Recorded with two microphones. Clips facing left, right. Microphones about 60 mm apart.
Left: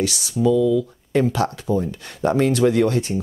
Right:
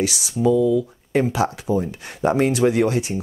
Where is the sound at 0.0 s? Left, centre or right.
Right.